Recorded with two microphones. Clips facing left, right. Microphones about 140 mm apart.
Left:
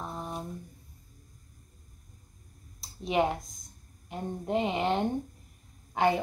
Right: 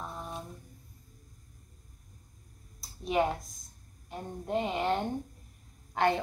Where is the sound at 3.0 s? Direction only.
20° left (ahead or behind).